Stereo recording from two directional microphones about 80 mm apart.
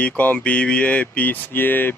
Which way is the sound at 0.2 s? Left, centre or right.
Centre.